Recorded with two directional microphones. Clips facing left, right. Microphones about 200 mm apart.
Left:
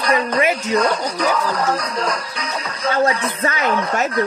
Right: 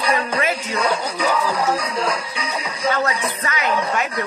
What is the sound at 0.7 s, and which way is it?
Speech, 5° right (ahead or behind).